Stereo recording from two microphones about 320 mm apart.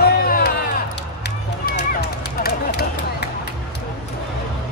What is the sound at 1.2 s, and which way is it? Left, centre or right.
Run, left.